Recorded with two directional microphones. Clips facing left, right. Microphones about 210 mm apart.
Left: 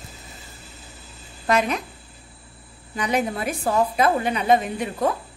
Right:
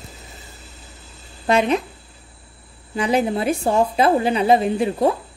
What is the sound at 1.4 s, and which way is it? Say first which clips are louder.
Speech: right 4 dB; 30° right (ahead or behind).